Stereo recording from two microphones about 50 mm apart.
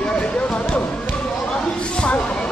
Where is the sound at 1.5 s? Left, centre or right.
Centre.